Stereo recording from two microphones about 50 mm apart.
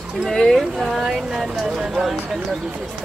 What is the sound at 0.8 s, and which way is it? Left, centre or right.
Speech, centre.